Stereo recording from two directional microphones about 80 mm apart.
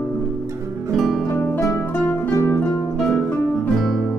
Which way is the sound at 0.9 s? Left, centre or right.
Centre.